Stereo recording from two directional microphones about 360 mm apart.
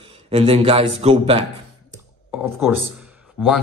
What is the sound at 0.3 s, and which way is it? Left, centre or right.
A man's voice, centre.